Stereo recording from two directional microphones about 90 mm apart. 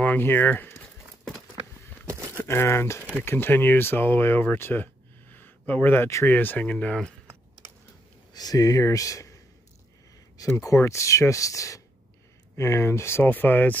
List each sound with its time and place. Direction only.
0.0 s speech: 20° left (ahead or behind)
0.7 s clip-clop: 5° left (ahead or behind)
2.0 s a sound: 35° right (ahead or behind)
2.3 s speech: 25° left (ahead or behind)
5.3 s a sound: 20° left (ahead or behind)
6.2 s speech: 20° left (ahead or behind)
8.3 s speech: 45° left (ahead or behind); by 13.7 s 20° left (ahead or behind)